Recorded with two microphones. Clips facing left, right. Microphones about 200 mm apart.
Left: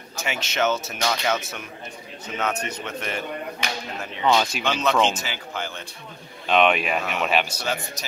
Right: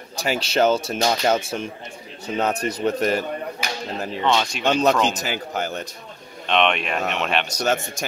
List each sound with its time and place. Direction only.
0.1 s speech: 35° right (ahead or behind)
4.2 s speech: 5° left (ahead or behind)
4.6 s speech: 35° right (ahead or behind)
6.4 s speech: 5° left (ahead or behind)
7.6 s speech: 45° right (ahead or behind)